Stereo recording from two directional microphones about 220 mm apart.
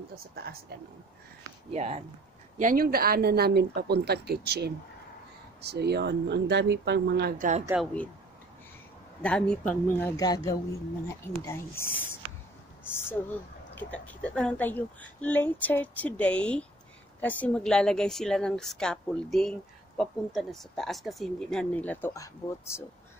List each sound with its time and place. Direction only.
0.4 s speech: 45° right (ahead or behind)
1.7 s speech: 30° right (ahead or behind)
2.6 s speech: 40° right (ahead or behind)
7.6 s a woman's voice: 5° right (ahead or behind)
9.2 s a woman's voice: 5° left (ahead or behind)